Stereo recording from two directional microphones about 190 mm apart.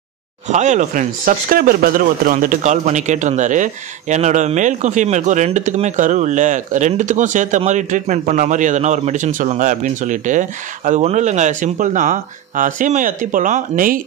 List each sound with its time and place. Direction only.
0.5 s speech: 40° right (ahead or behind)